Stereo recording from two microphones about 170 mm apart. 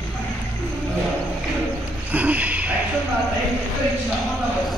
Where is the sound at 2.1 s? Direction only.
10° right (ahead or behind).